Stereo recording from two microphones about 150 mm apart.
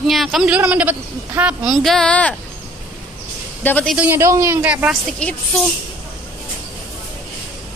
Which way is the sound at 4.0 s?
15° right (ahead or behind).